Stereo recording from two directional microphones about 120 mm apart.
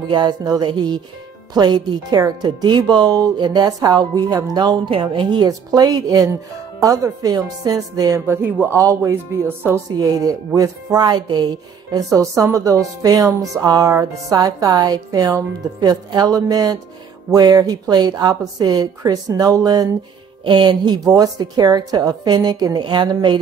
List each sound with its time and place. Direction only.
0.1 s speech: 35° right (ahead or behind)
5.5 s speech: 30° right (ahead or behind)
8.3 s speech: 20° right (ahead or behind); by 23.4 s 40° right (ahead or behind)